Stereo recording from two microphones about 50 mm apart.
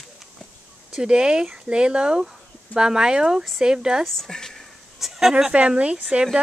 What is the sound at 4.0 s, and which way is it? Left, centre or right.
Speech, centre.